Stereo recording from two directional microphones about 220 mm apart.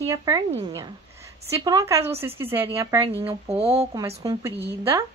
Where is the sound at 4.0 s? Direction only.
15° right (ahead or behind).